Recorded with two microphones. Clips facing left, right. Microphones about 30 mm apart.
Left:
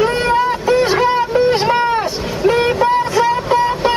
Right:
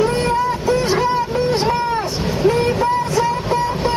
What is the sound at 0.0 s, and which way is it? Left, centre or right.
Vehicle, left.